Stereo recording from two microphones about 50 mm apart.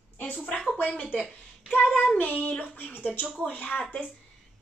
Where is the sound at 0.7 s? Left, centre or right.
Left.